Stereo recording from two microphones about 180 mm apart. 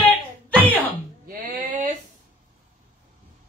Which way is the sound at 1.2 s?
50° right (ahead or behind).